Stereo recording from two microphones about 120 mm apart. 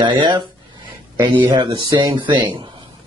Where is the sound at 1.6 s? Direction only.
35° right (ahead or behind).